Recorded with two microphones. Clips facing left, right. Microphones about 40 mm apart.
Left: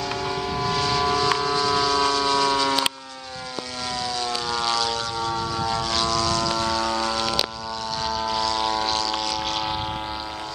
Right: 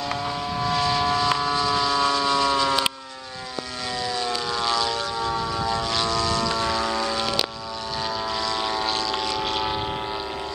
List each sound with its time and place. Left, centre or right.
0.1 s vehicle: centre
4.0 s vehicle: centre